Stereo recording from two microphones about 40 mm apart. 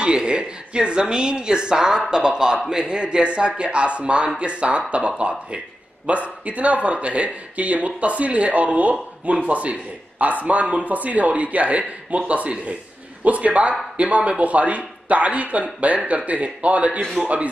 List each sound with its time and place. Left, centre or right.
0.0 s a woman's voice: right